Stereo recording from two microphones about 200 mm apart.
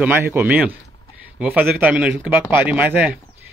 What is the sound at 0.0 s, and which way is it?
A man's voice, 10° right (ahead or behind).